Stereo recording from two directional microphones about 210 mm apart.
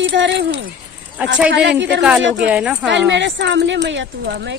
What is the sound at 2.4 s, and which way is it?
Speech, 5° right (ahead or behind).